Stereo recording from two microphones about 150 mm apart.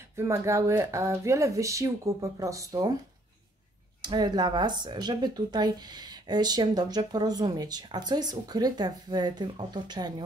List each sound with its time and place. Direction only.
0.1 s speech: 20° right (ahead or behind)
4.0 s speech: 30° right (ahead or behind)